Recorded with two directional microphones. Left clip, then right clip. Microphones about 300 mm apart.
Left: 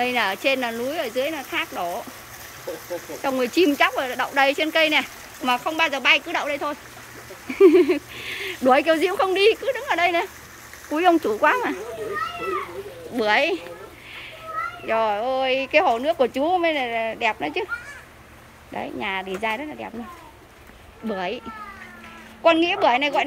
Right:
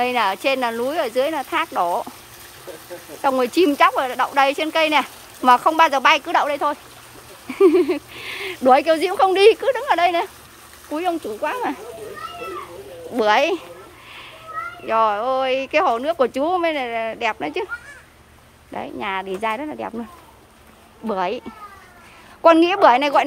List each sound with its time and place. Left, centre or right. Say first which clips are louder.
0.0 s speech: right 3 dB; centre
3.2 s speech: right 4 dB; centre
13.1 s speech: right 3 dB; centre
14.9 s speech: right 4 dB; centre
18.7 s speech: right 2 dB; centre
21.1 s speech: right 5 dB; centre
22.4 s speech: right 5 dB; centre